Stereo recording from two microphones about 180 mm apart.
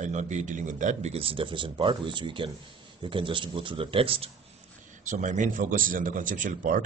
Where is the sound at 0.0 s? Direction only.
40° right (ahead or behind).